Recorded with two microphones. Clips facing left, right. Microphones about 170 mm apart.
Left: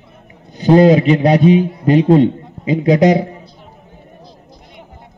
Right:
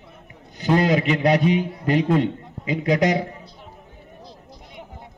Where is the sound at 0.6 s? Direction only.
25° left (ahead or behind).